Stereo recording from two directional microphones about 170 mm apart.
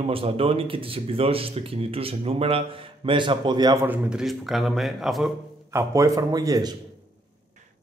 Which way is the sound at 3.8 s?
5° right (ahead or behind).